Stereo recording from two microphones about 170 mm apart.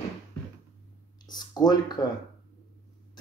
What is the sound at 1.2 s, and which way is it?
Speech, 25° left (ahead or behind).